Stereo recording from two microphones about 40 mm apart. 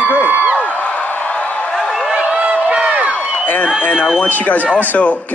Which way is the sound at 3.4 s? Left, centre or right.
Left.